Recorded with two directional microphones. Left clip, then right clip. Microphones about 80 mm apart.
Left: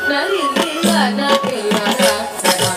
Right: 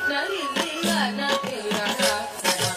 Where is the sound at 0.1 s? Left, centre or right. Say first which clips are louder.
Left 9 dB; right.